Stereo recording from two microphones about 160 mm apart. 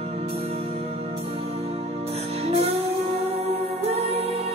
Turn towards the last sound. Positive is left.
turn(degrees=-40)  # may be behind; listen again after turning